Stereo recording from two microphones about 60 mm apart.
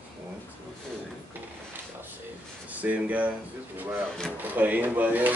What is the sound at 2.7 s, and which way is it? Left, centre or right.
Speech, right.